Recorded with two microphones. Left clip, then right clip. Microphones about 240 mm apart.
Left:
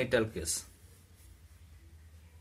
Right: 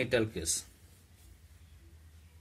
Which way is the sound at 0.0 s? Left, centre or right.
Right.